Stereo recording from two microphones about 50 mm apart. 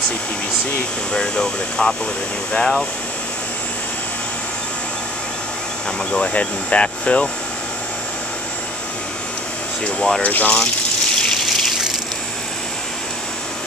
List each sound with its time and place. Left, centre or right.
1.1 s speech: centre
6.1 s speech: left
9.9 s speech: centre
10.2 s speech: left
11.1 s water: centre